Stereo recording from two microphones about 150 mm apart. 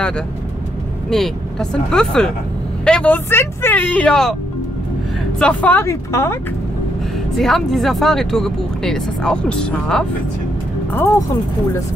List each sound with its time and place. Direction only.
1.1 s speech: 5° left (ahead or behind)
5.4 s speech: 10° left (ahead or behind)
7.3 s speech: centre (ahead or behind)
10.9 s speech: 20° left (ahead or behind)